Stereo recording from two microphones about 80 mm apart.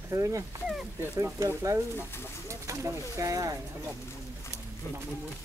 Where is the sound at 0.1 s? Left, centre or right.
Right.